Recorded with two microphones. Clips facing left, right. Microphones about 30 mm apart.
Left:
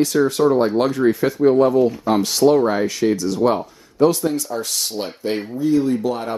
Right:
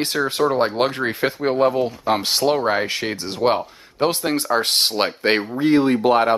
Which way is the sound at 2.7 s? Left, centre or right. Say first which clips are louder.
Left 3 dB; right.